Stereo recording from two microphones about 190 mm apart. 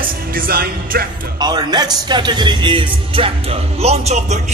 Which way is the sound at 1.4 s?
20° right (ahead or behind).